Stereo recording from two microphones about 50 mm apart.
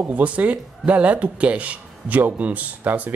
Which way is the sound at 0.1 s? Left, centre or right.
Right.